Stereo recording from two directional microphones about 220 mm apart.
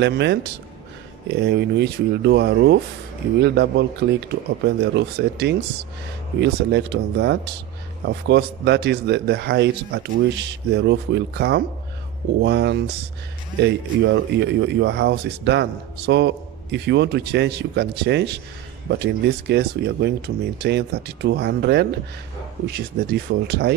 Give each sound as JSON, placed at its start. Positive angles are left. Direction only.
{"t": 0.0, "sound": "speech", "side_deg": -50}